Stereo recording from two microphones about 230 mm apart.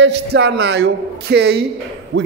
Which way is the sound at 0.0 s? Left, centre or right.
Right.